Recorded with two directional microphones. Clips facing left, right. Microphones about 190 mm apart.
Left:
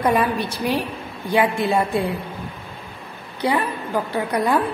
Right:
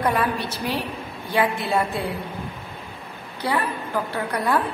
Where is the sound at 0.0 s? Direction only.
15° left (ahead or behind).